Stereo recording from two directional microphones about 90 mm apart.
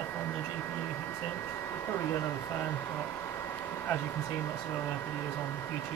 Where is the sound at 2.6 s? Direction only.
25° left (ahead or behind).